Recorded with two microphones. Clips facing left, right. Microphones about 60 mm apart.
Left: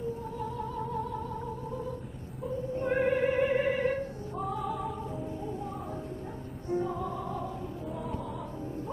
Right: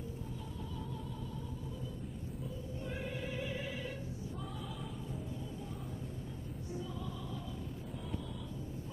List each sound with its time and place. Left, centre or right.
0.4 s music: left
2.4 s opera: left
6.7 s music: left